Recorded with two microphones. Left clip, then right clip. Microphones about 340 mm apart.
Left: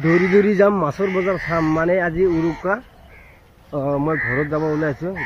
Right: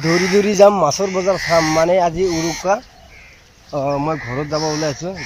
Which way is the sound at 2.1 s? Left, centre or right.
Right.